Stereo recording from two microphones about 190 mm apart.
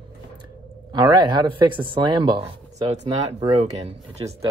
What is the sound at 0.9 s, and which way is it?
Speech, 25° right (ahead or behind).